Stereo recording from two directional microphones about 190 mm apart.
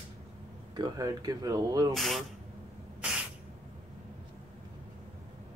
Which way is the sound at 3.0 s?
5° right (ahead or behind).